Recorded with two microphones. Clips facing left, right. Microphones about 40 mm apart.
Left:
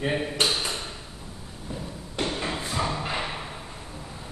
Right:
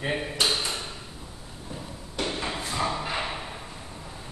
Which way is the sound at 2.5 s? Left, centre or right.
Centre.